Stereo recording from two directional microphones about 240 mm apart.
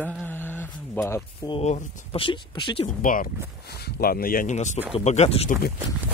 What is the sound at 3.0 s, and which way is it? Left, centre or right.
Speech, left.